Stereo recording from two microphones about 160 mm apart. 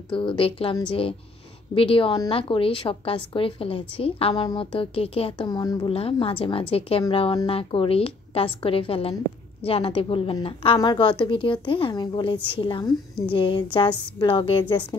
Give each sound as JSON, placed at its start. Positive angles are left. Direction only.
{"t": 0.1, "sound": "a woman's voice", "side_deg": 35}
{"t": 1.8, "sound": "a woman's voice", "side_deg": 35}
{"t": 5.5, "sound": "a woman's voice", "side_deg": 25}